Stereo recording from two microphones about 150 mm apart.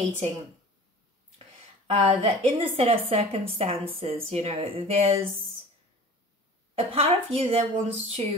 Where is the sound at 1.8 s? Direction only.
40° right (ahead or behind).